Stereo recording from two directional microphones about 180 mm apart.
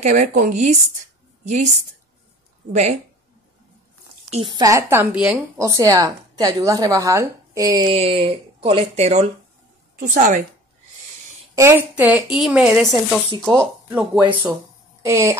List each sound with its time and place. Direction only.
0.0 s speech: 40° right (ahead or behind)
2.7 s speech: 40° right (ahead or behind)
4.3 s a woman's voice: 25° right (ahead or behind)
5.1 s speech: 5° right (ahead or behind)
5.6 s a woman's voice: 20° right (ahead or behind); by 10.4 s 45° right (ahead or behind)
11.5 s speech: 15° right (ahead or behind)
14.5 s a sound: 15° right (ahead or behind)